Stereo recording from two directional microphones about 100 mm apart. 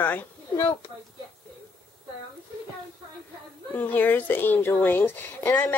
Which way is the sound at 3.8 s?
20° left (ahead or behind).